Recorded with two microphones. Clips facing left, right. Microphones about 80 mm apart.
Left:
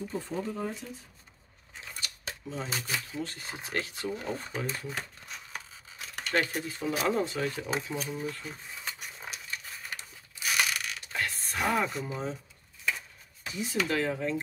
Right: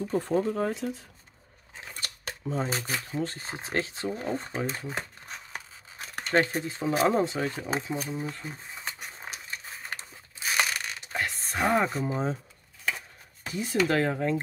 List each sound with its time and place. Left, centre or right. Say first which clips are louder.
0.1 s speech: right 11 dB; right
2.0 s speech: right 2 dB; right
5.9 s crumpling: right 2 dB; right
6.3 s speech: right 5 dB; right
10.6 s coin: right 3 dB; right
13.8 s speech: right 4 dB; right